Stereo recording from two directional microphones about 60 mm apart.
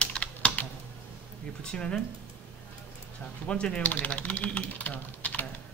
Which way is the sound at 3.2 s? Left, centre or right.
Centre.